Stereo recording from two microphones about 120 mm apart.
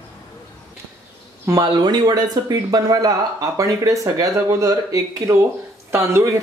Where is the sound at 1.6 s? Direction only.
35° right (ahead or behind).